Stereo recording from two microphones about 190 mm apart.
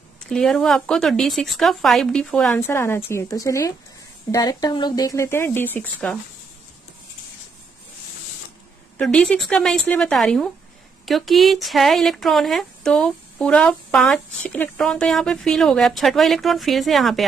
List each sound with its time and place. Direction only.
0.3 s speech: 5° left (ahead or behind)
8.9 s speech: 5° left (ahead or behind)